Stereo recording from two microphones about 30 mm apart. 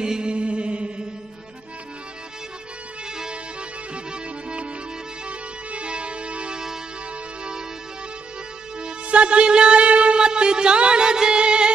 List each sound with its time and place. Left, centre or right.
0.0 s chant: right
0.3 s chant: right
3.9 s music: right
9.0 s music: right